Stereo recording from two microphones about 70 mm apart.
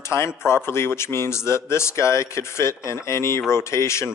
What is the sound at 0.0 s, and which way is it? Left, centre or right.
Speech, left.